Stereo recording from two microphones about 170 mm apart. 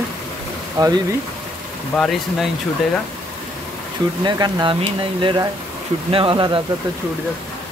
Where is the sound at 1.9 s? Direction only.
5° left (ahead or behind).